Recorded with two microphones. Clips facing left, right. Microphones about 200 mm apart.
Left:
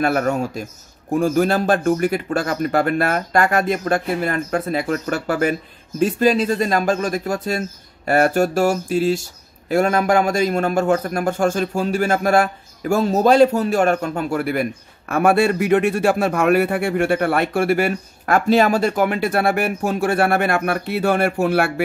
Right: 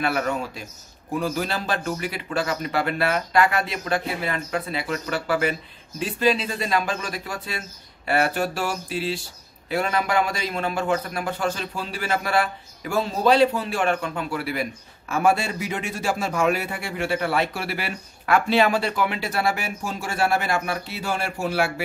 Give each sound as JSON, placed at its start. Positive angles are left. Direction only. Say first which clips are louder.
{"t": 0.0, "sound": "a man's voice", "louder": "left 6 dB", "side_deg": 45}